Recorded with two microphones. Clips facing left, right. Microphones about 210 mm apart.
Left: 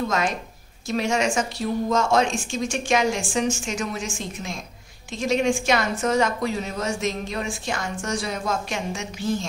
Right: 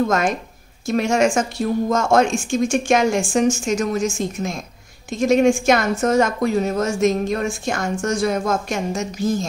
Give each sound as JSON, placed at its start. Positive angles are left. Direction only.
{"t": 0.0, "sound": "a woman's voice", "side_deg": -50}